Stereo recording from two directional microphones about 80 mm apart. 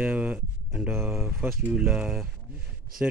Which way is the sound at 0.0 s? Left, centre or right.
Centre.